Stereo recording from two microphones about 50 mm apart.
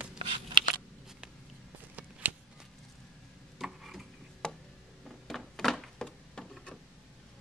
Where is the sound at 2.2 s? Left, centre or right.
Right.